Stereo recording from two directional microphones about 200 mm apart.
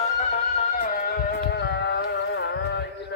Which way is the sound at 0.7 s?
45° left (ahead or behind).